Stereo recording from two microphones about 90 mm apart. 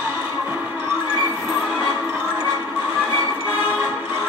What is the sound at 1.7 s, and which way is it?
Music, 75° left (ahead or behind).